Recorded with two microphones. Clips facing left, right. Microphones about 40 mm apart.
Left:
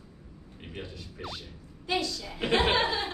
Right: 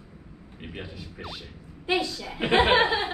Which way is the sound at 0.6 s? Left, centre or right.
Centre.